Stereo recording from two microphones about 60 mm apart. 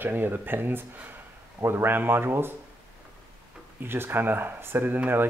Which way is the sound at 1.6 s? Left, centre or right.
Right.